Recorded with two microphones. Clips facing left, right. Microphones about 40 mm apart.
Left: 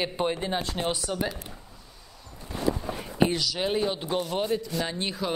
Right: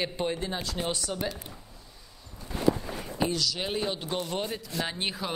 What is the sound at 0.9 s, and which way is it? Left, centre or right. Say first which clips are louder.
Speech: left 3 dB; centre.